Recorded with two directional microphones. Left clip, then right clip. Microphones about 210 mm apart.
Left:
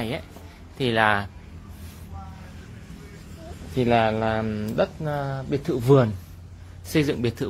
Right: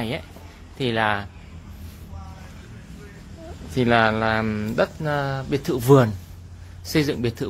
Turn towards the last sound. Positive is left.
turn(degrees=0)  # may be behind; listen again after turning